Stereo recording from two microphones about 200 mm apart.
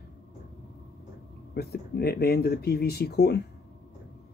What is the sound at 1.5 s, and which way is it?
Speech, 50° left (ahead or behind).